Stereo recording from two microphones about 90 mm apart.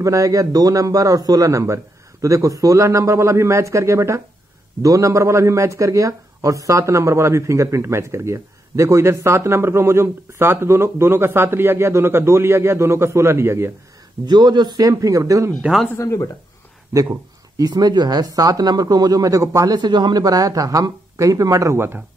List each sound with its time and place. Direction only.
0.0 s a man's voice: 35° right (ahead or behind)
14.2 s speech: 55° right (ahead or behind); by 15.5 s 35° right (ahead or behind)
16.0 s speech: 35° left (ahead or behind)
16.9 s speech: 40° right (ahead or behind)